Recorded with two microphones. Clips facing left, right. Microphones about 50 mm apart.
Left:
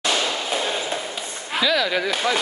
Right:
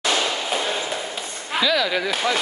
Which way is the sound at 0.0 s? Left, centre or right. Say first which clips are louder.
Right 1 dB; centre.